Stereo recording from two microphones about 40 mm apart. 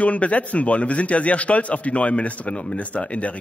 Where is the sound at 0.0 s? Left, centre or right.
Left.